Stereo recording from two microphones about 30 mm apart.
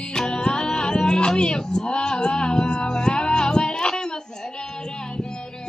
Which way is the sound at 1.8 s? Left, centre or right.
Left.